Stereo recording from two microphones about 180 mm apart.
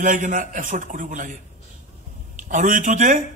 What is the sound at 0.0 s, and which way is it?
A man's voice, 45° right (ahead or behind).